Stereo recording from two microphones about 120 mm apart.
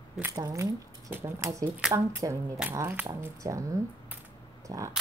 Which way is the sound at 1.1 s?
20° right (ahead or behind).